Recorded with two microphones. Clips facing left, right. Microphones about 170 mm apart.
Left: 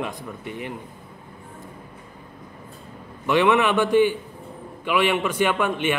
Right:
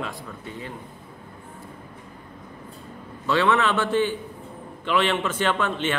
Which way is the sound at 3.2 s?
15° left (ahead or behind).